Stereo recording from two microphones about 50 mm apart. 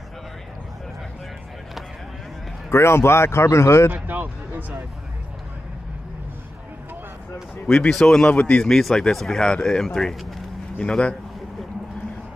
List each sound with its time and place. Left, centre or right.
2.7 s speech: left
4.1 s speech: right
7.9 s speech: centre
8.3 s speech: left
8.6 s speech: centre
10.8 s speech: centre